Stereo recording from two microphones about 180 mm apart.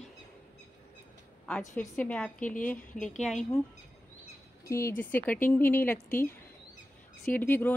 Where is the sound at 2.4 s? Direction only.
45° left (ahead or behind).